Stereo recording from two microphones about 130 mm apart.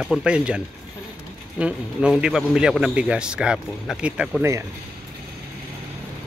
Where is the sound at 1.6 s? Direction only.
5° right (ahead or behind).